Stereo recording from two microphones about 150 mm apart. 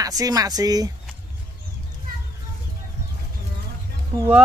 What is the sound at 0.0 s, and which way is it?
Speech, 25° right (ahead or behind).